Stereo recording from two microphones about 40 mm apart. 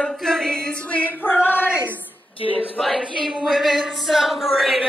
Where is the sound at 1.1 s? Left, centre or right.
Left.